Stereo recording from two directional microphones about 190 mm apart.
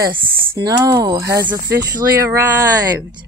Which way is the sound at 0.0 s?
20° right (ahead or behind).